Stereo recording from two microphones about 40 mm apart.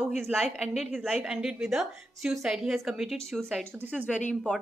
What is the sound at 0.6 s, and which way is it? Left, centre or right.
Speech, centre.